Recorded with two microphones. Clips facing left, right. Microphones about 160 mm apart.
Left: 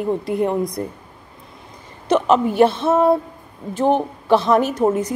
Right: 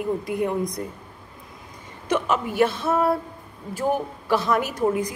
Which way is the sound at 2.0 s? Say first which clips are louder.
Left 7 dB; 30° left (ahead or behind).